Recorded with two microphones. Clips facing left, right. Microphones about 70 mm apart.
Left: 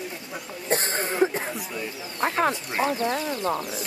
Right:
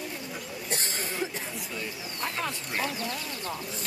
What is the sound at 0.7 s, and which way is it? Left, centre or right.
Cough, left.